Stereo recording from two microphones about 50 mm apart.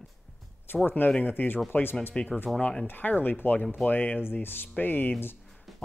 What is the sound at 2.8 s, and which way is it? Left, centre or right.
Speech, left.